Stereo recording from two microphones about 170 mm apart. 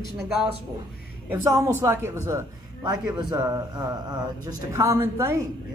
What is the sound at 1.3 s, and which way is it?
Speech, 20° right (ahead or behind).